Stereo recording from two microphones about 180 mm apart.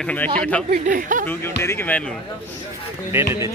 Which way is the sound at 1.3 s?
15° left (ahead or behind).